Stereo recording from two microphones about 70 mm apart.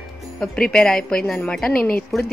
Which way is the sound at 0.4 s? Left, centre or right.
Centre.